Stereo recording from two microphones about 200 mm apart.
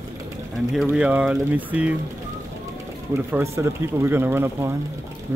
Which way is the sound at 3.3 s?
10° right (ahead or behind).